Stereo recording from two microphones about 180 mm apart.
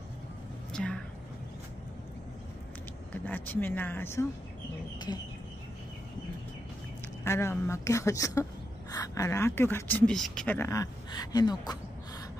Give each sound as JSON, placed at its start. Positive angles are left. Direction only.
{"t": 0.7, "sound": "speech", "side_deg": 5}
{"t": 3.1, "sound": "speech", "side_deg": 10}
{"t": 7.2, "sound": "speech", "side_deg": 15}